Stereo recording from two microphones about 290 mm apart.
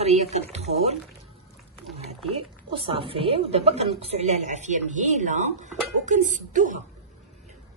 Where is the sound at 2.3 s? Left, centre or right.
Centre.